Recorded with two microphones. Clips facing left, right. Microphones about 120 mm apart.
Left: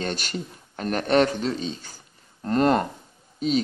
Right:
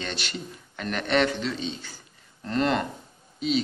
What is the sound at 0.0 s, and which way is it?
A woman's voice, 45° left (ahead or behind).